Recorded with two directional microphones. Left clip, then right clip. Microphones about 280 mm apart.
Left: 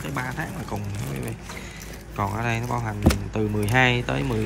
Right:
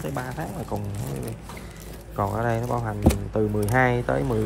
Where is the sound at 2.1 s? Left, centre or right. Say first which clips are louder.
Right 1 dB; centre.